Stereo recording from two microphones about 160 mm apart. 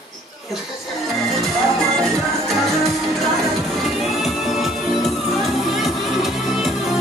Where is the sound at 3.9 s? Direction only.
Centre (ahead or behind).